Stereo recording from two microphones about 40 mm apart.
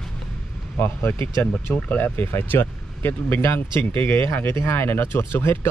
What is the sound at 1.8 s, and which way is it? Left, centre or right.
Speech, left.